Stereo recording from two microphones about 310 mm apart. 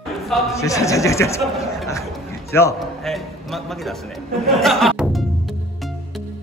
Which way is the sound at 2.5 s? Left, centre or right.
Centre.